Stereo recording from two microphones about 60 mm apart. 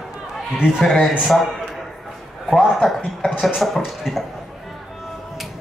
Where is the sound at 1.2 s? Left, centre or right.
Centre.